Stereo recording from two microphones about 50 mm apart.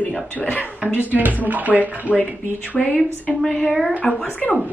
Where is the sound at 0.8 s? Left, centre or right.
Right.